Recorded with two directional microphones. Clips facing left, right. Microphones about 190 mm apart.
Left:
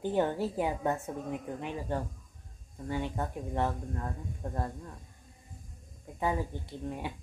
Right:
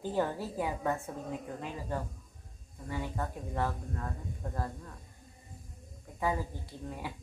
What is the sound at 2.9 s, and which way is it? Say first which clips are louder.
Speech: left 3 dB; 25° left (ahead or behind).